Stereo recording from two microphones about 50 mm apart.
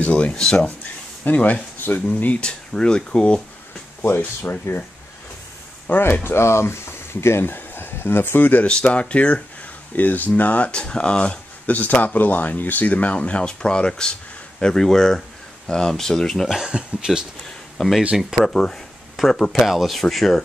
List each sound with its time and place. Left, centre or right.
0.0 s speech: left
1.2 s speech: left
2.4 s speech: centre
4.0 s speech: left
5.9 s speech: left
6.2 s speech: left
9.1 s speech: left
9.9 s speech: left
10.7 s speech: centre
11.7 s speech: left; by 16.4 s centre
16.4 s speech: centre
17.7 s speech: centre